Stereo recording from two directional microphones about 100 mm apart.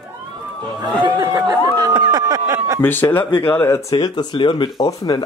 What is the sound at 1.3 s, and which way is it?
Speech, 45° right (ahead or behind).